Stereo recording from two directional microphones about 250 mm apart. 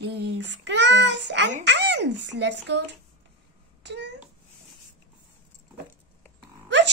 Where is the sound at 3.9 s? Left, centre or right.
Right.